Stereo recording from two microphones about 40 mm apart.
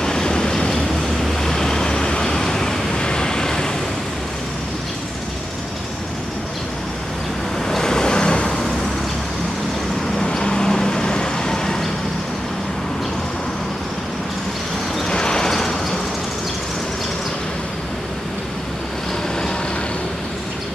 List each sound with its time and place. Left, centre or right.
0.0 s train: centre
1.2 s vehicle: centre
7.6 s waves: centre
10.2 s vehicle: centre
15.0 s vehicle: centre